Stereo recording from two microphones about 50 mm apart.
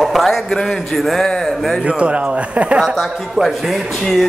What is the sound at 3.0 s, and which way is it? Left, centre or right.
Speech, centre.